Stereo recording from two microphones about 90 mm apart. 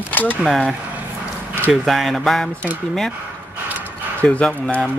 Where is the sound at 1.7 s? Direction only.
Centre (ahead or behind).